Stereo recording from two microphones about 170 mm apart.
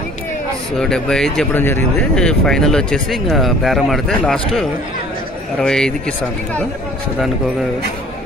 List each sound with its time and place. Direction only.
0.7 s speech: 5° left (ahead or behind)